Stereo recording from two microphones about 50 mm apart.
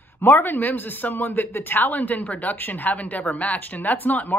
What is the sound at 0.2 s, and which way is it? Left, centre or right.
A man's voice, left.